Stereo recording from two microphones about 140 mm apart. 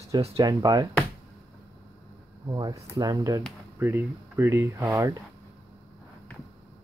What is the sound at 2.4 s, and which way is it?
Speech, 25° right (ahead or behind).